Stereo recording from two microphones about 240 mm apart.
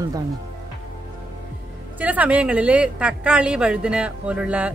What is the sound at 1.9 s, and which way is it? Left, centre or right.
A woman's voice, centre.